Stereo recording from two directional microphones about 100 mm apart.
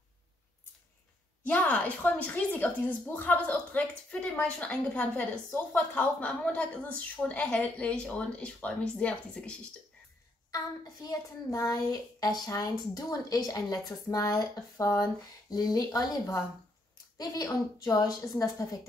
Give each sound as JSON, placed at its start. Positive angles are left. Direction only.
{"t": 1.4, "sound": "a woman's voice", "side_deg": 15}
{"t": 10.5, "sound": "speech", "side_deg": 40}